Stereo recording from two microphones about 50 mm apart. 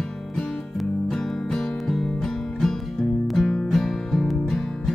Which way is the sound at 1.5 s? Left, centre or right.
Centre.